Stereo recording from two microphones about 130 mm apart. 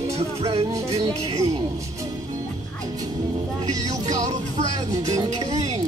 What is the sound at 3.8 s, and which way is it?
Music, 30° right (ahead or behind).